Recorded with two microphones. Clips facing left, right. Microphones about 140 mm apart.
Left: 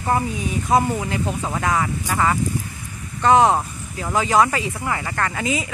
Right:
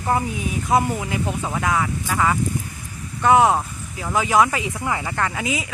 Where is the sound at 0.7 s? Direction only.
5° right (ahead or behind).